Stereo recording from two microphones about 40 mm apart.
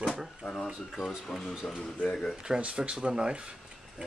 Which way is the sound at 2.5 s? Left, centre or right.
Right.